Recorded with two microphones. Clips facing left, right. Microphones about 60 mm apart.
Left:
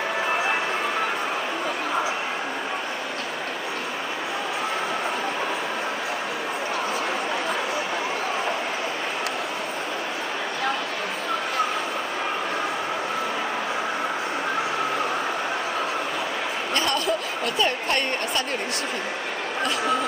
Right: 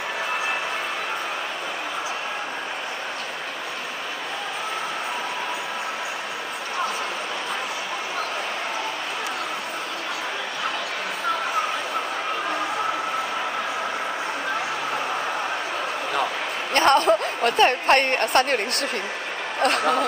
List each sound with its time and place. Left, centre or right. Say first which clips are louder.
16.7 s a woman's voice: right 8 dB; right
19.6 s speech: right 4 dB; right